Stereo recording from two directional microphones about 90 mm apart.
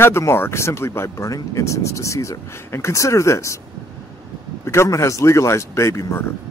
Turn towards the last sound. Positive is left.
turn(degrees=30)  # may be behind; listen again after turning